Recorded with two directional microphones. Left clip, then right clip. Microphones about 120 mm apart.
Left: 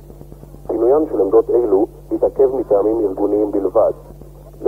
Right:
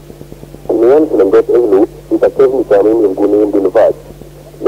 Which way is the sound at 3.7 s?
20° left (ahead or behind).